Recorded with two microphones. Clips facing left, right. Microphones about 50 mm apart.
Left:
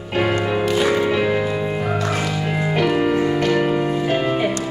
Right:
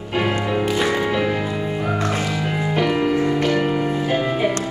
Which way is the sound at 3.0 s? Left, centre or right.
Centre.